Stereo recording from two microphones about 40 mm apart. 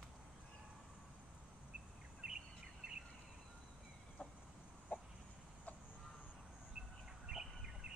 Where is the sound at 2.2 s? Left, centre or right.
Centre.